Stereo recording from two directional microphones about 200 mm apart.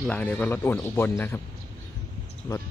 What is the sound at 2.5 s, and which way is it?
Cricket, 15° left (ahead or behind).